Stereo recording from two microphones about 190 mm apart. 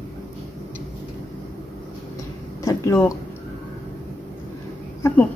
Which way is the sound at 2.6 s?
15° left (ahead or behind).